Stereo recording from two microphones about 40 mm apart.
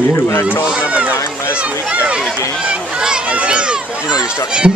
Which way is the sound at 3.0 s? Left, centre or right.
Right.